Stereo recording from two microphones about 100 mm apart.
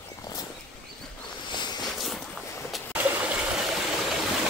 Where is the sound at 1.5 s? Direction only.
45° left (ahead or behind).